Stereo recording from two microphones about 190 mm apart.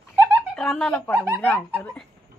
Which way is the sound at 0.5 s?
5° left (ahead or behind).